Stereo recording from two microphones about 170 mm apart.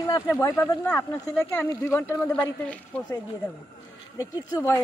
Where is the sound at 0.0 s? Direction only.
20° left (ahead or behind).